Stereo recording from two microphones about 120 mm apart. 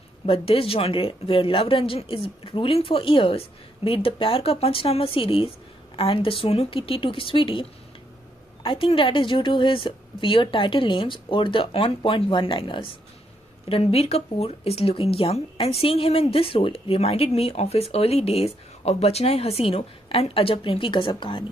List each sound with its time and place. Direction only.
0.3 s a woman's voice: 50° left (ahead or behind)
8.6 s a woman's voice: 45° left (ahead or behind)